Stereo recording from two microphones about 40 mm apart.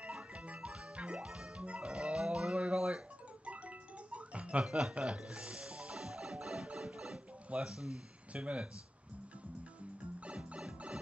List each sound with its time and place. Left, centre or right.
0.0 s music: right
4.6 s speech: centre
5.0 s music: right
7.4 s speech: right
7.7 s speech: centre
8.3 s speech: right
10.2 s music: right